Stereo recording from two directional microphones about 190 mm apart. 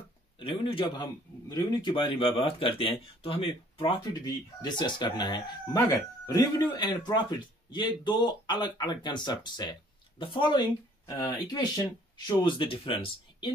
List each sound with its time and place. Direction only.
0.4 s speech: 30° left (ahead or behind)